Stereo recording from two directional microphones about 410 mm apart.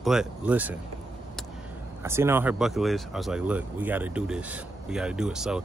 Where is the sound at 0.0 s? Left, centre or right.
Centre.